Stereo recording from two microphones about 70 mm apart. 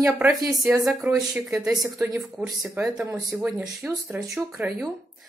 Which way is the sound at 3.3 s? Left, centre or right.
Centre.